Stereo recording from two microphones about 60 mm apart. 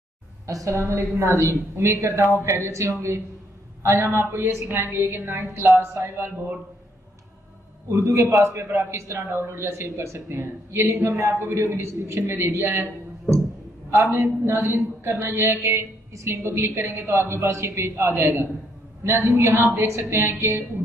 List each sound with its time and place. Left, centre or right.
0.5 s a woman's voice: right
0.7 s a man's voice: right
7.9 s a man's voice: right
14.1 s a man's voice: right
15.6 s a man's voice: right